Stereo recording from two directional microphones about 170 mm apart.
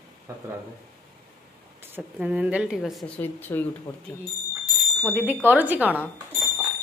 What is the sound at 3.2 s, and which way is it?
Speech, 10° left (ahead or behind).